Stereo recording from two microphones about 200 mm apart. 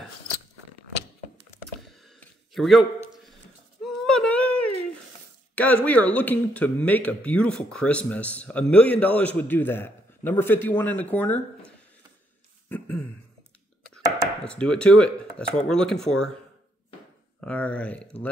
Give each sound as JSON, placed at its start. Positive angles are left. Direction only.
{"t": 2.0, "sound": "a sound", "side_deg": 0}
{"t": 5.9, "sound": "speech", "side_deg": 5}
{"t": 12.6, "sound": "throat clearing", "side_deg": 5}
{"t": 14.0, "sound": "chopping", "side_deg": -20}
{"t": 14.4, "sound": "speech", "side_deg": 5}
{"t": 17.4, "sound": "speech", "side_deg": 5}